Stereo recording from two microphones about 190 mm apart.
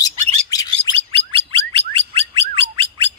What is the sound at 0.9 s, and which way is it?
Bird, 30° right (ahead or behind).